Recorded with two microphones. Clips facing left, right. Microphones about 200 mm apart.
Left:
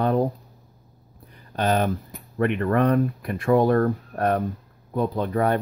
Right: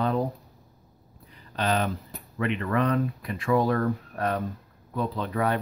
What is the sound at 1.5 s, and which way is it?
Speech, 50° left (ahead or behind).